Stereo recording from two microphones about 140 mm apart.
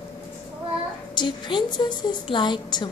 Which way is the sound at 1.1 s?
35° left (ahead or behind).